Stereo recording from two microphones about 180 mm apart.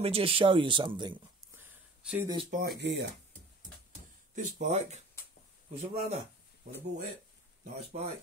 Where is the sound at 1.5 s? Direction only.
10° right (ahead or behind).